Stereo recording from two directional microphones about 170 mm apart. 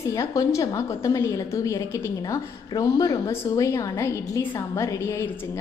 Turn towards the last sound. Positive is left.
turn(degrees=10)  # may be behind; listen again after turning